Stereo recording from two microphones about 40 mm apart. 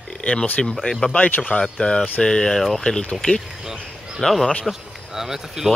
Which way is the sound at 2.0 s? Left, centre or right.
Left.